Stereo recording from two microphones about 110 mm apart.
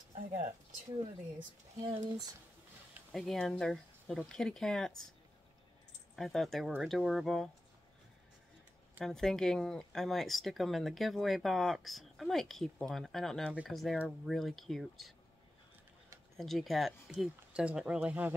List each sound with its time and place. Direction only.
0.1 s a sound: 75° right (ahead or behind)
1.8 s speech: 35° right (ahead or behind)
3.1 s speech: centre (ahead or behind)
6.1 s speech: centre (ahead or behind)
9.0 s speech: 5° left (ahead or behind)
13.9 s speech: 10° right (ahead or behind)
14.3 s speech: centre (ahead or behind)
16.3 s speech: centre (ahead or behind)